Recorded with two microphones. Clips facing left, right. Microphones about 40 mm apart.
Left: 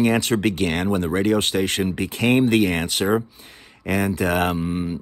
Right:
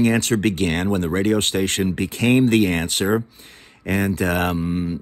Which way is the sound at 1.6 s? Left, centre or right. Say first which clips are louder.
Right 1 dB; left.